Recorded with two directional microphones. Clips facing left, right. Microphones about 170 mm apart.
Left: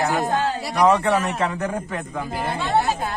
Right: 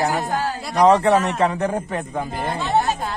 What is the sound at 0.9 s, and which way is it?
Speech, 35° right (ahead or behind).